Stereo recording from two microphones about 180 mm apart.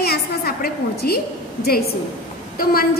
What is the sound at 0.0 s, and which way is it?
A woman's voice, 60° left (ahead or behind).